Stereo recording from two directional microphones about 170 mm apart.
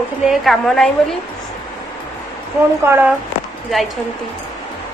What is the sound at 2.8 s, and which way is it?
Speech, 15° right (ahead or behind).